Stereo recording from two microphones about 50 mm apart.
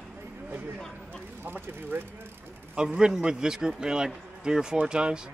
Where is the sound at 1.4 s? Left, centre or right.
Right.